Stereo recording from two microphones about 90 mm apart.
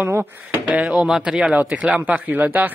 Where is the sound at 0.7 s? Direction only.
5° right (ahead or behind).